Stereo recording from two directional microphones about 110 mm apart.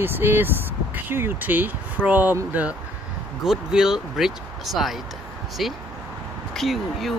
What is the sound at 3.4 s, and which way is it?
Speech, 5° right (ahead or behind).